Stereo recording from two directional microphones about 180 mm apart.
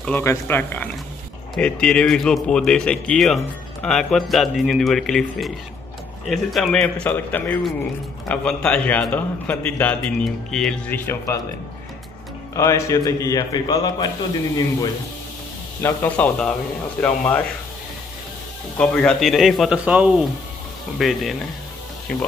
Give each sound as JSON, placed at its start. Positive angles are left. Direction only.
{"t": 0.0, "sound": "a man's voice", "side_deg": 10}
{"t": 12.5, "sound": "a man's voice", "side_deg": 15}
{"t": 15.8, "sound": "a man's voice", "side_deg": 10}
{"t": 18.8, "sound": "a man's voice", "side_deg": 5}